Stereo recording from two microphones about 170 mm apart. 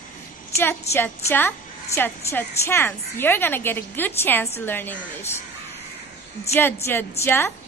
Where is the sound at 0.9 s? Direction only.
15° left (ahead or behind).